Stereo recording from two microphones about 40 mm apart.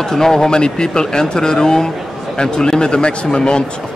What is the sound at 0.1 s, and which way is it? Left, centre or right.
Speech, centre.